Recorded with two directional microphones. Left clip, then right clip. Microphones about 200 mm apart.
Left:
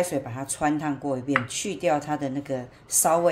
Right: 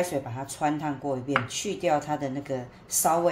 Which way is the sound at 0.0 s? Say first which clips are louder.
Left 2 dB; 25° left (ahead or behind).